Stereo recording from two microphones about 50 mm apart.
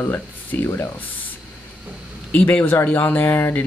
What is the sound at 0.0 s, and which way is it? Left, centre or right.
Speech, left.